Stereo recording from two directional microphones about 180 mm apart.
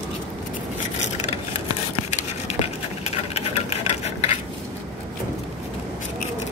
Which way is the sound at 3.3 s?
35° left (ahead or behind).